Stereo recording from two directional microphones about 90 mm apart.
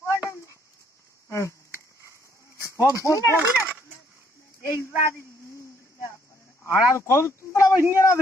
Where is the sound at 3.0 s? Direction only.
35° left (ahead or behind).